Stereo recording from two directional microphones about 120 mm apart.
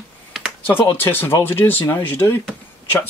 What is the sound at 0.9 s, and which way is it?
Speech, 20° left (ahead or behind).